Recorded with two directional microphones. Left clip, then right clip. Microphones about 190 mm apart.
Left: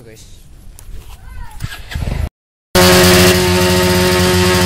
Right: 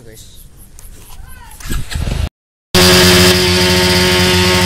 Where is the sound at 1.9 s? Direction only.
20° right (ahead or behind).